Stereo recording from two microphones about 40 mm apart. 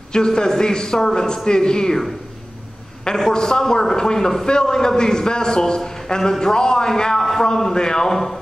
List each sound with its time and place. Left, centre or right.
0.1 s a man's voice: centre
3.2 s a man's voice: centre